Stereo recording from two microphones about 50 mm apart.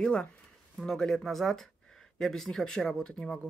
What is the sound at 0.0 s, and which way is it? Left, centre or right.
Speech, centre.